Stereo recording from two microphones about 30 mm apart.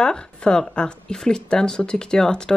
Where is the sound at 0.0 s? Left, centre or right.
Left.